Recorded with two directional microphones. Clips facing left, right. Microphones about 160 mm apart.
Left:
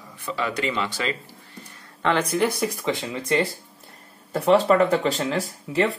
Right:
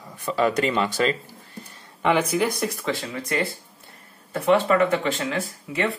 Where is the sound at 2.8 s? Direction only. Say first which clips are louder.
Left 1 dB; 20° left (ahead or behind).